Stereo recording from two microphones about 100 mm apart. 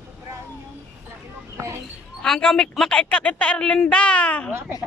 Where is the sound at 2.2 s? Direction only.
5° left (ahead or behind).